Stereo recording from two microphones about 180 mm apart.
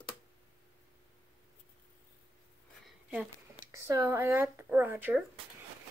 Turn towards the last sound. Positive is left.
turn(degrees=-10)  # may be behind; listen again after turning